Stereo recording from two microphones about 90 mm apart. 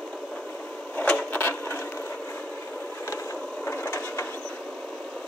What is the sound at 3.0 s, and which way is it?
Wood, 30° left (ahead or behind).